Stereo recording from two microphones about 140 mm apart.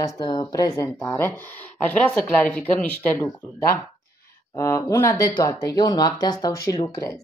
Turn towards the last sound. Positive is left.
turn(degrees=25)  # may be behind; listen again after turning